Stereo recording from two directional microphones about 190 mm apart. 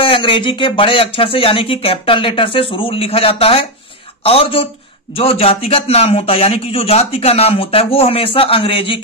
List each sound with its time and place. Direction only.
0.0 s a man's voice: 30° left (ahead or behind)